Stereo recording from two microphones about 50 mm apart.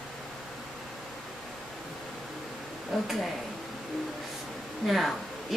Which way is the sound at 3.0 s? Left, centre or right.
Centre.